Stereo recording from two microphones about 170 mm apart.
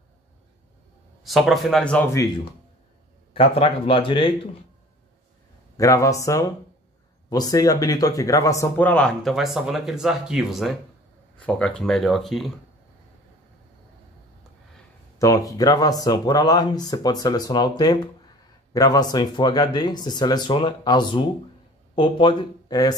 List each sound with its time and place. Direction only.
1.2 s speech: centre (ahead or behind)
3.3 s speech: 35° left (ahead or behind)
5.8 s speech: 20° left (ahead or behind); by 12.5 s centre (ahead or behind)
15.1 s speech: 20° left (ahead or behind)